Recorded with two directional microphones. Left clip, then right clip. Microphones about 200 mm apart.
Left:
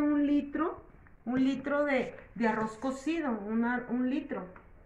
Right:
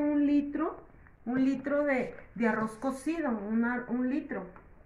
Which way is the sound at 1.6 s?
20° right (ahead or behind).